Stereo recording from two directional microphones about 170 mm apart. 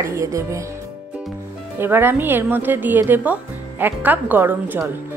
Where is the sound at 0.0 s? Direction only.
20° right (ahead or behind).